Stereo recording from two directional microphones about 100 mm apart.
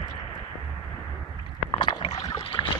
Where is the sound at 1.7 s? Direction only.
55° left (ahead or behind).